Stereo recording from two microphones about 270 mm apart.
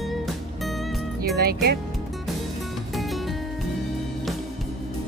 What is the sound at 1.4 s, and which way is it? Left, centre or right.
Speech, right.